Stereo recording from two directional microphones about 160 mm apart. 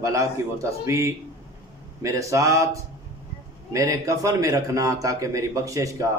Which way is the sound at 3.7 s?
20° right (ahead or behind).